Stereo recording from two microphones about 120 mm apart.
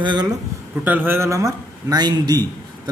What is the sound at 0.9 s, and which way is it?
A man's voice, 15° right (ahead or behind).